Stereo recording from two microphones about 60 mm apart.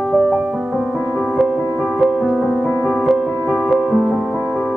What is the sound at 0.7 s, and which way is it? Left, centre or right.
Music, centre.